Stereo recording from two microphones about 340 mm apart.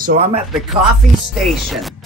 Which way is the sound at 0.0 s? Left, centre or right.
Right.